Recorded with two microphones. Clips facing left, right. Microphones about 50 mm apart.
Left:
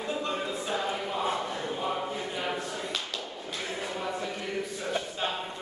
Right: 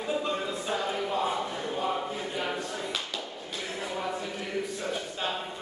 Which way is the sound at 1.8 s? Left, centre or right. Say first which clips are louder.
Right 3 dB; centre.